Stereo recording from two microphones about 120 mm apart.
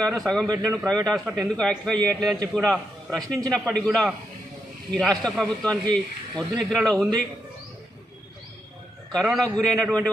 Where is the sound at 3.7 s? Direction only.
Centre (ahead or behind).